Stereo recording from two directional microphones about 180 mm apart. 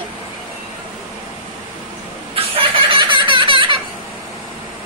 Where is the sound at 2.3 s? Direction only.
30° right (ahead or behind).